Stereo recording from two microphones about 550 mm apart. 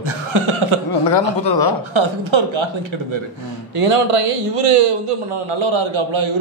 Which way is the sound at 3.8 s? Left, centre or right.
Right.